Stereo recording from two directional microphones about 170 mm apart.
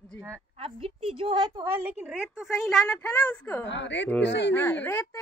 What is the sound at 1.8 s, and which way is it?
Speech, 5° right (ahead or behind).